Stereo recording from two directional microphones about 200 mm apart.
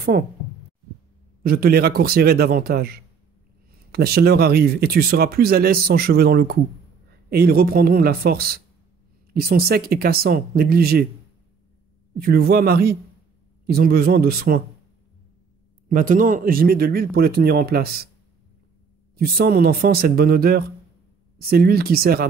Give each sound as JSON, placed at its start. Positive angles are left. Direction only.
{"t": 1.4, "sound": "speech", "side_deg": -50}
{"t": 12.2, "sound": "speech", "side_deg": -50}
{"t": 15.9, "sound": "speech", "side_deg": -45}
{"t": 19.1, "sound": "speech", "side_deg": -50}